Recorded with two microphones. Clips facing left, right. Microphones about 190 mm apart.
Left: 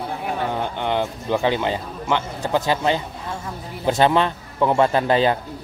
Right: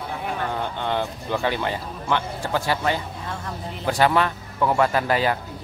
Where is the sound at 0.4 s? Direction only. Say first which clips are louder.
Left 3 dB; 15° left (ahead or behind).